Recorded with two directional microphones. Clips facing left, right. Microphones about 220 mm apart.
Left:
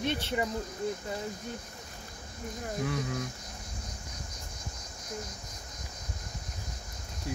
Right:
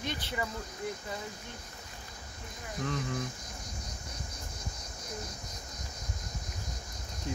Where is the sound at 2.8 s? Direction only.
10° left (ahead or behind).